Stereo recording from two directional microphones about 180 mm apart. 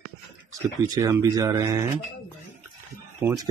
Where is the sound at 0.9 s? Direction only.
20° right (ahead or behind).